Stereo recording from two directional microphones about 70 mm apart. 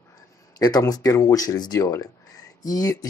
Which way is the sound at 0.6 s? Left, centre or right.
Left.